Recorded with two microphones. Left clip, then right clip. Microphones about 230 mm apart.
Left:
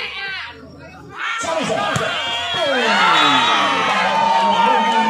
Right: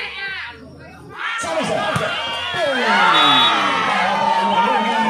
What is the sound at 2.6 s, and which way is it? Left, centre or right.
Crowd, left.